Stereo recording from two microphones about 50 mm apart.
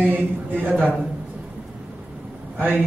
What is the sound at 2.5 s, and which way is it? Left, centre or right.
Speech, right.